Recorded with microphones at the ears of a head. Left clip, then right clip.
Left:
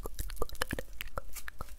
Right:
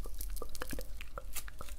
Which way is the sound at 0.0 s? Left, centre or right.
Left.